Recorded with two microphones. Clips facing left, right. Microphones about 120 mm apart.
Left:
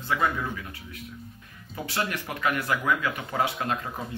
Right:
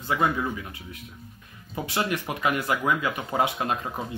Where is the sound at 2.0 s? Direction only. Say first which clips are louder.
Right 3 dB; 20° right (ahead or behind).